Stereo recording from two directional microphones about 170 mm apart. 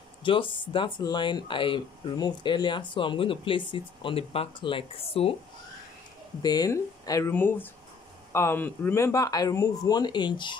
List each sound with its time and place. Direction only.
0.2 s speech: 30° left (ahead or behind)
6.4 s speech: 25° left (ahead or behind)